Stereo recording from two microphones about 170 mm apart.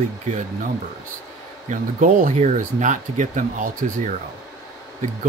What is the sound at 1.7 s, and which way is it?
Speech, 50° right (ahead or behind).